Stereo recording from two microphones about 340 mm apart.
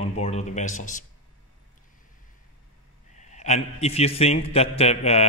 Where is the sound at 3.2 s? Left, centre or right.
Left.